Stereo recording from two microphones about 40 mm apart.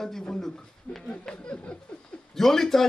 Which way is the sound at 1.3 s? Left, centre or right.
Left.